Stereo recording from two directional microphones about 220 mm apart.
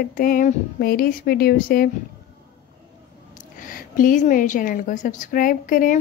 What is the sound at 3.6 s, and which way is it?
Speech, 40° left (ahead or behind).